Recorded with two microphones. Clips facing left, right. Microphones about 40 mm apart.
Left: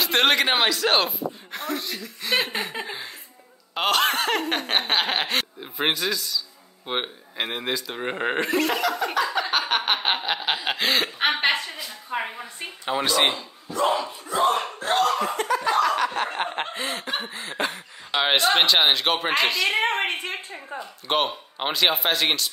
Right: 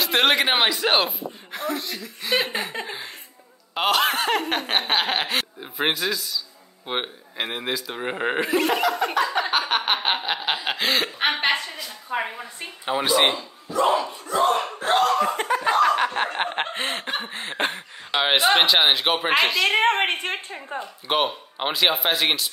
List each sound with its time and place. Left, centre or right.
0.0 s speech: centre
14.2 s a sound: centre
14.9 s laughter: centre
15.3 s laughter: right
17.3 s snicker: right
18.1 s speech: centre
20.1 s a woman's voice: right
21.1 s speech: centre